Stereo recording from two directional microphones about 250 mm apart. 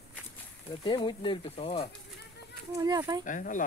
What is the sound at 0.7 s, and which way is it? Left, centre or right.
Speech, centre.